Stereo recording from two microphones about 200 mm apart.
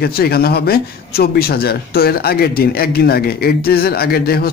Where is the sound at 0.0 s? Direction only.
50° left (ahead or behind).